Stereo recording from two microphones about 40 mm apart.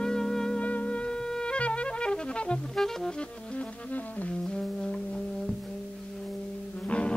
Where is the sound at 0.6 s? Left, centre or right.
Left.